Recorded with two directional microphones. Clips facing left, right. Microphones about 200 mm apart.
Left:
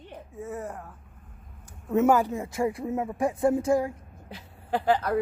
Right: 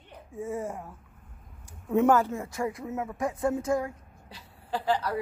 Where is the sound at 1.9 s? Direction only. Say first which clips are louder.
Left 1 dB; 10° left (ahead or behind); by 3.9 s 30° left (ahead or behind).